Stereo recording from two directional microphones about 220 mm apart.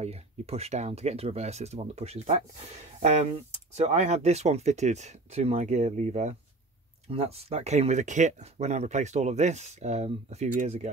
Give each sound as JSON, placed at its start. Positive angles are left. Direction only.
{"t": 0.0, "sound": "speech", "side_deg": -30}